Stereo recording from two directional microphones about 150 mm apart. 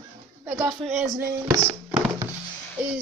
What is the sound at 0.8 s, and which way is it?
Speech, 50° right (ahead or behind).